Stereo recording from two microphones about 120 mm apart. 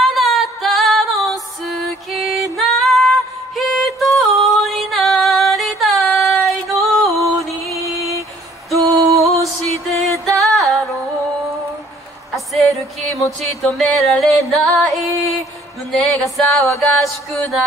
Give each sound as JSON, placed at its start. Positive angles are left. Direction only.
{"t": 0.0, "sound": "music", "side_deg": 0}
{"t": 8.7, "sound": "music", "side_deg": -30}
{"t": 9.2, "sound": "music", "side_deg": 0}
{"t": 13.2, "sound": "music", "side_deg": 0}